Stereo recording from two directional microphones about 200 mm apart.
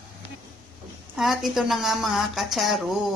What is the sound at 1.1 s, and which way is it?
Speech, centre (ahead or behind).